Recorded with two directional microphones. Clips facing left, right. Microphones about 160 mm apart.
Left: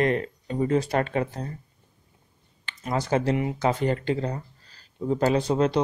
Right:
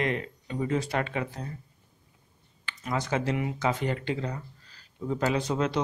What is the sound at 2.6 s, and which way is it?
Speech, 35° left (ahead or behind).